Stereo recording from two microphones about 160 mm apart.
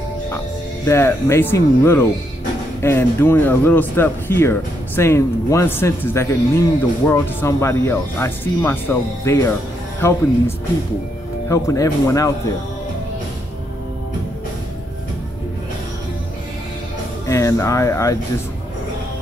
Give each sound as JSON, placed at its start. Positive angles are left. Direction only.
{"t": 0.8, "sound": "speech", "side_deg": 15}
{"t": 11.4, "sound": "speech", "side_deg": 20}
{"t": 17.3, "sound": "speech", "side_deg": 20}